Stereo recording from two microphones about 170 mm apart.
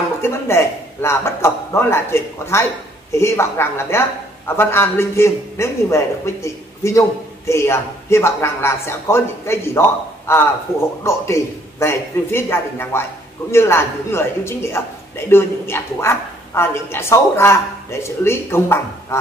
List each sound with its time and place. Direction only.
0.2 s a man's voice: 15° left (ahead or behind)